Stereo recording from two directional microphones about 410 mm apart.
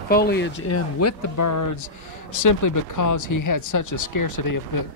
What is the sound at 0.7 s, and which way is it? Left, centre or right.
Speech, left.